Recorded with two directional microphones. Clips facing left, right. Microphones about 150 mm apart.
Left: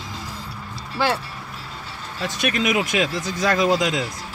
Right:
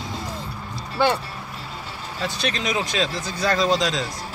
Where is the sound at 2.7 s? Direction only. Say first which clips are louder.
Left 3 dB; 15° left (ahead or behind).